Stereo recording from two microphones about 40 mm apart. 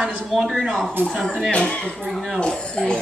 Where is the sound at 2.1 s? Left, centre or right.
Centre.